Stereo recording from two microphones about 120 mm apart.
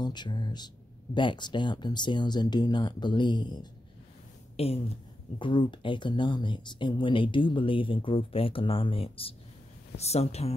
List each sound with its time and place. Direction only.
0.0 s speech: 35° left (ahead or behind)
4.6 s speech: 55° left (ahead or behind)
5.4 s speech: 40° left (ahead or behind)
9.9 s speech: 60° left (ahead or behind)